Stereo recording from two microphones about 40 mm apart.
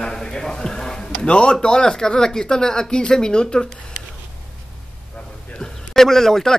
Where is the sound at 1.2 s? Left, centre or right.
Left.